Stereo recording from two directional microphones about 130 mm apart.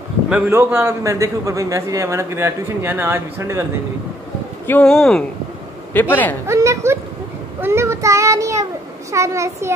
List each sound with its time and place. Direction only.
0.3 s a man's voice: 15° right (ahead or behind)
4.6 s a man's voice: 15° left (ahead or behind)
4.9 s speech: 5° left (ahead or behind)
5.9 s a man's voice: 15° left (ahead or behind)
6.4 s a man's voice: 25° right (ahead or behind)